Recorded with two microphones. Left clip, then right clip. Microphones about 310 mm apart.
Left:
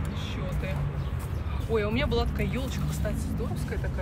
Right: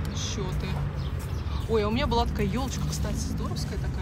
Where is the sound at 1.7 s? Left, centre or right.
Centre.